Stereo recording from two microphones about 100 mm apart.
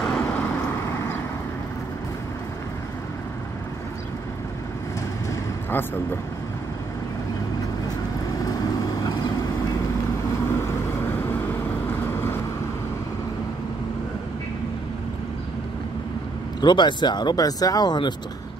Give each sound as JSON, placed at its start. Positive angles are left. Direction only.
{"t": 0.1, "sound": "vehicle", "side_deg": 10}
{"t": 0.8, "sound": "vehicle", "side_deg": 25}
{"t": 11.9, "sound": "vehicle", "side_deg": 25}
{"t": 16.6, "sound": "speech", "side_deg": 50}